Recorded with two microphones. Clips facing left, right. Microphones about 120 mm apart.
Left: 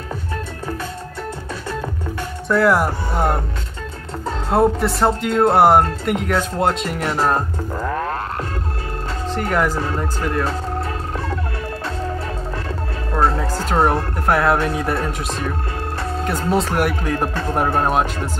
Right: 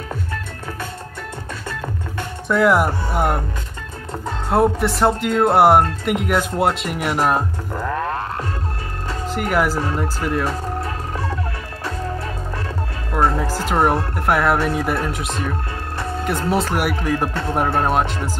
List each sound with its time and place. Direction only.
2.4 s speech: centre (ahead or behind)
4.5 s speech: centre (ahead or behind)
9.3 s speech: 5° right (ahead or behind)
13.1 s music: 15° right (ahead or behind)
13.4 s speech: centre (ahead or behind)